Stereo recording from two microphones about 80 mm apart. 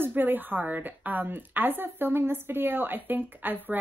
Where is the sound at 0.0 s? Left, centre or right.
Right.